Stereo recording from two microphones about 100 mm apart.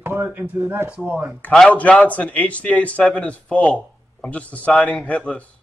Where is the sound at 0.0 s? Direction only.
20° right (ahead or behind).